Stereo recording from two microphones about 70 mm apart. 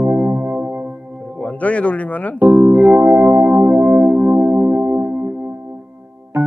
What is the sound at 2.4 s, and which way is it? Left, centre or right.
Keyboard, right.